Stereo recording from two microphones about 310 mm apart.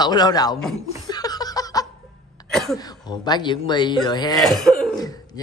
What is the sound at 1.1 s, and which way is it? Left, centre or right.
Snicker, centre.